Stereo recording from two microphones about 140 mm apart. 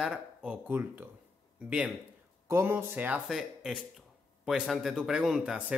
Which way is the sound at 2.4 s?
20° right (ahead or behind).